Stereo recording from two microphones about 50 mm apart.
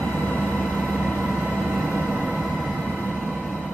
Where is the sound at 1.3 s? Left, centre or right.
Centre.